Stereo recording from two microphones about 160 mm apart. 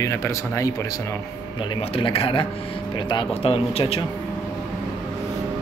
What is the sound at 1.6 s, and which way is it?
Speech, 35° left (ahead or behind).